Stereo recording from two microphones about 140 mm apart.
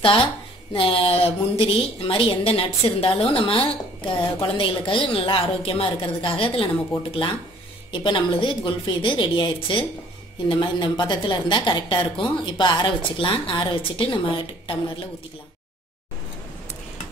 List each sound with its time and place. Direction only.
0.0 s a woman's voice: 40° left (ahead or behind)